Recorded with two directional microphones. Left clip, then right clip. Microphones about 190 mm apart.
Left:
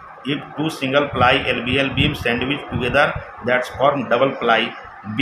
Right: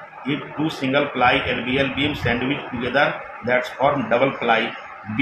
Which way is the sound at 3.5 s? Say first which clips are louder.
Left 2 dB; 25° left (ahead or behind).